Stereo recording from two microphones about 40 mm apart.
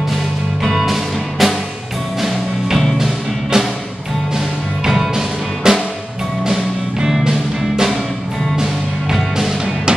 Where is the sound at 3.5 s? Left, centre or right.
Centre.